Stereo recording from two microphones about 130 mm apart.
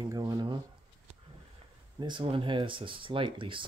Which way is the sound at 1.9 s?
35° right (ahead or behind).